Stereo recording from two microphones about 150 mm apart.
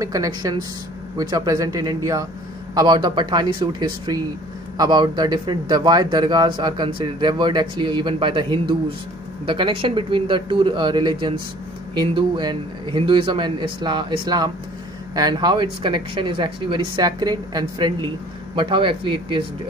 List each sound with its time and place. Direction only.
0.0 s speech: 25° right (ahead or behind)